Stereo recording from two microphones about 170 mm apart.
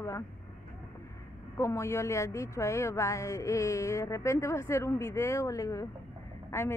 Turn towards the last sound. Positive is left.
turn(degrees=15)  # may be behind; listen again after turning